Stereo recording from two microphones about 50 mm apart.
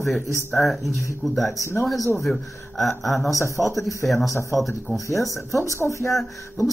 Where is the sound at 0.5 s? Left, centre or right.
Centre.